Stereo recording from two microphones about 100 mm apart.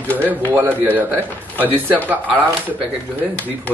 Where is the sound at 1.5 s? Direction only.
20° left (ahead or behind).